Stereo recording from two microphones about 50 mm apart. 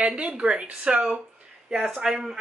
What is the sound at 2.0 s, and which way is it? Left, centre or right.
Speech, centre.